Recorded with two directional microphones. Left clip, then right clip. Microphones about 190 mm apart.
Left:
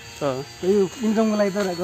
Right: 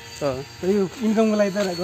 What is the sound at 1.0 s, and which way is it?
Speech, 20° right (ahead or behind).